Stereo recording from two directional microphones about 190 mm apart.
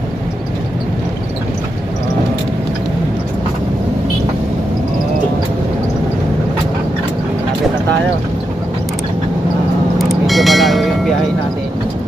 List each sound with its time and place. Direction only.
9.9 s vehicle: centre (ahead or behind)